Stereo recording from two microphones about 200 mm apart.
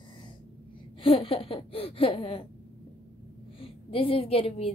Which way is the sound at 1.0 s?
25° left (ahead or behind).